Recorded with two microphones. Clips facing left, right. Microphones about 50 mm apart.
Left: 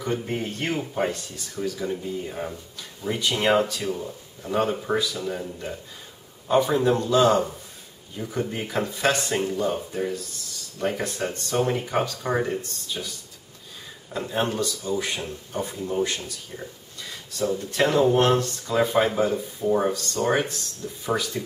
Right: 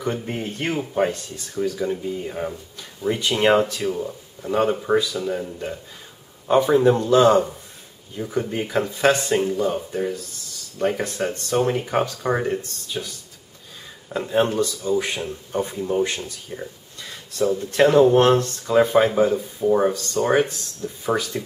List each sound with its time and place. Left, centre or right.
0.0 s speech: centre
0.3 s speech: centre
0.7 s speech: centre
15.9 s speech: right
16.2 s speech: centre
17.7 s speech: centre